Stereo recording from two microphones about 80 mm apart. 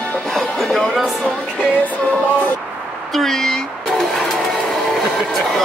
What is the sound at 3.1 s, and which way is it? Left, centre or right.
Vehicle, centre.